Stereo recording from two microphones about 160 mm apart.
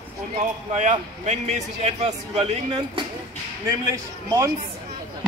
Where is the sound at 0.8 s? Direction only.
50° right (ahead or behind).